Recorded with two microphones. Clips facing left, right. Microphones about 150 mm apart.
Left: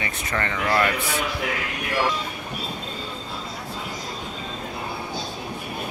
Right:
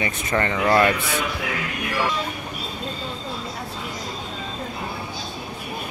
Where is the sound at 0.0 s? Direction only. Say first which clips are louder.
Right 4 dB; 25° right (ahead or behind).